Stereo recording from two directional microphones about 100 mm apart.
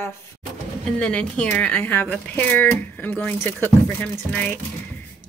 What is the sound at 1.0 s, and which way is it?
A woman's voice, 10° left (ahead or behind).